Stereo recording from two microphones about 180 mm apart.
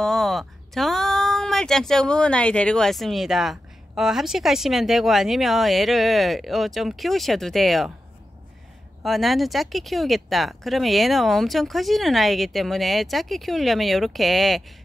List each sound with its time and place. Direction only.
0.0 s speech: centre (ahead or behind)
9.0 s speech: centre (ahead or behind)